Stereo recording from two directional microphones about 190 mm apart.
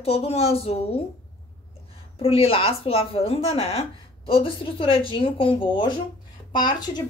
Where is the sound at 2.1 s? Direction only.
30° left (ahead or behind).